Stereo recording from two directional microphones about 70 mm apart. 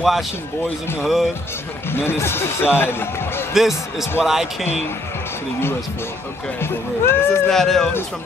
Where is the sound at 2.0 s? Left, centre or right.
Left.